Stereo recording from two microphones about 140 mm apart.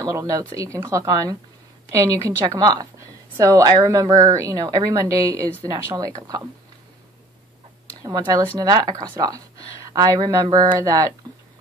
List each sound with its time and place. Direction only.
0.0 s speech: 25° right (ahead or behind)
8.5 s speech: 30° right (ahead or behind)